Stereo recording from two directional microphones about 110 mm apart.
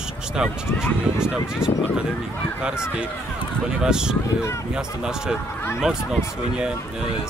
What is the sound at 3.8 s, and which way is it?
Speech, 5° right (ahead or behind).